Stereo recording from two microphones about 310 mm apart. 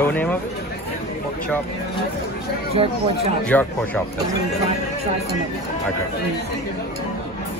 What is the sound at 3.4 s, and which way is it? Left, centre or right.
Speech, centre.